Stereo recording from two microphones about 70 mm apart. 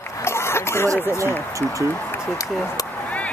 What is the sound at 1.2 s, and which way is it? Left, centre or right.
Speech, right.